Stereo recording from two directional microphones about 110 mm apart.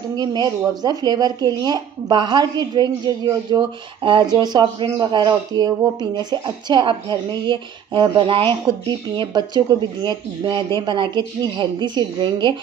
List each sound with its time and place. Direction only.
0.1 s speech: 40° right (ahead or behind)